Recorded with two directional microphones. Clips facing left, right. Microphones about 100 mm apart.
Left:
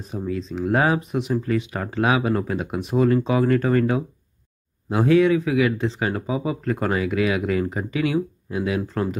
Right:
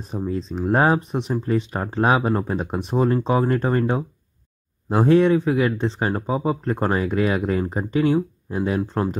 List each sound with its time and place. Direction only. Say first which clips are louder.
0.4 s speech: right 2 dB; 30° right (ahead or behind)
4.8 s speech: right 1 dB; 40° right (ahead or behind)